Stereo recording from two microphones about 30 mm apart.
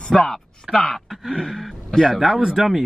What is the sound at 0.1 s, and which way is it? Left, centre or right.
Speech, centre.